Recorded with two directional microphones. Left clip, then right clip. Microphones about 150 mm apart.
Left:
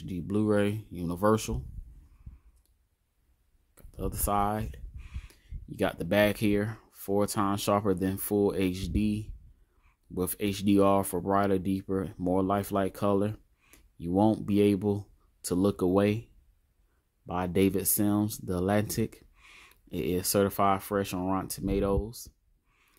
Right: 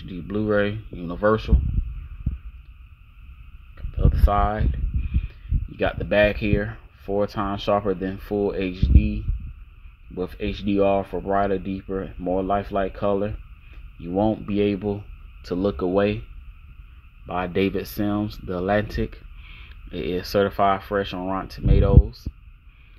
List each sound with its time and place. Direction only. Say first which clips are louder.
0.0 s a sound: right 3 dB; 10° left (ahead or behind)
1.0 s speech: right 6 dB; 10° left (ahead or behind)
3.7 s speech: right 7 dB; 10° left (ahead or behind)
17.3 s speech: right 4 dB; 10° left (ahead or behind)
19.7 s a sound: right 4 dB; 10° left (ahead or behind)
20.2 s speech: right 6 dB; 10° left (ahead or behind)